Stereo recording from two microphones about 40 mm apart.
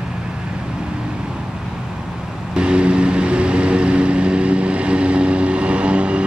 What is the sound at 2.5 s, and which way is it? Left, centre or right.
Vehicle, right.